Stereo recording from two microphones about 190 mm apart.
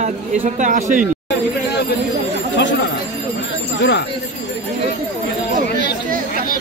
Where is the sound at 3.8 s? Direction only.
65° left (ahead or behind).